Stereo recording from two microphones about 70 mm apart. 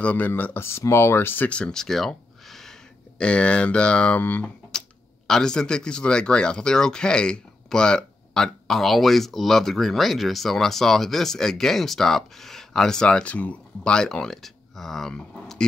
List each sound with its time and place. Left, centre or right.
0.0 s speech: left
0.3 s speech: left
1.5 s a sound: centre
3.2 s speech: centre
4.7 s speech: centre